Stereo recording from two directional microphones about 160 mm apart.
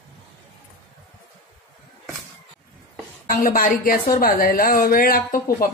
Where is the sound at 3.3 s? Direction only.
65° left (ahead or behind).